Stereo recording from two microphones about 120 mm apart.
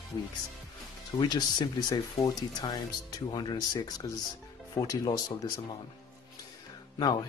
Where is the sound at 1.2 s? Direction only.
35° left (ahead or behind).